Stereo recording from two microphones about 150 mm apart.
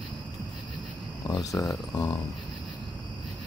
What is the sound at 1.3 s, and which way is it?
Speech, 25° left (ahead or behind).